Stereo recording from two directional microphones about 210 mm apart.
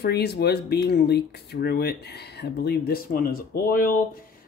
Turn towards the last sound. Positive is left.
turn(degrees=40)  # may be behind; listen again after turning